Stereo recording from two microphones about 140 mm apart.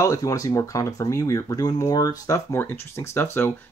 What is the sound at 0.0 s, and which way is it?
Speech, 25° left (ahead or behind).